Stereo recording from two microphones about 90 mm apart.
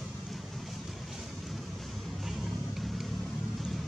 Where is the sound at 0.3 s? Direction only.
Centre (ahead or behind).